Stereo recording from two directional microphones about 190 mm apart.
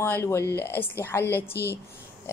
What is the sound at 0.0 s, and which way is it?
A woman's voice, 10° left (ahead or behind).